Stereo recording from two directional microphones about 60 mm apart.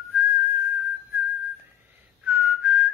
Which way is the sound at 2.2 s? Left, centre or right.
Right.